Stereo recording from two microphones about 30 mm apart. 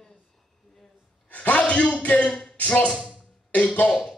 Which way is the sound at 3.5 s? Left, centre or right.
Left.